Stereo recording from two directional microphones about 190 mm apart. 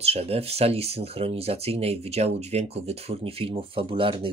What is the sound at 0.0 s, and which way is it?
Speech, 30° right (ahead or behind).